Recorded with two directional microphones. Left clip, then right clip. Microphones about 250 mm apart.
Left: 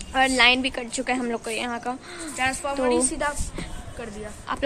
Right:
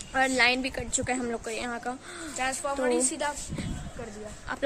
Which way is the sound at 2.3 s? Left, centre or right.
Right.